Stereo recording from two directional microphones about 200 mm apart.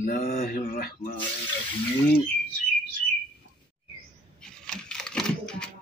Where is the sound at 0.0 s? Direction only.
45° left (ahead or behind).